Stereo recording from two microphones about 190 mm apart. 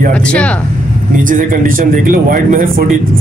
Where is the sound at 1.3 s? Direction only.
45° right (ahead or behind).